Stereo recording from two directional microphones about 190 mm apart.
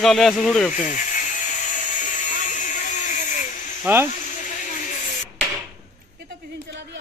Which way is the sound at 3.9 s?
10° right (ahead or behind).